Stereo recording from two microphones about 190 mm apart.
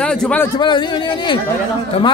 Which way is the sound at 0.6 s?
25° left (ahead or behind).